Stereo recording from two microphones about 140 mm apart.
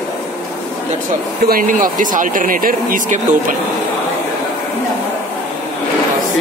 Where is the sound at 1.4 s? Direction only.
85° right.